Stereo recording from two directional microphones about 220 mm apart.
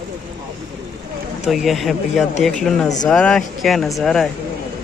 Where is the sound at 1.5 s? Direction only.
Centre (ahead or behind).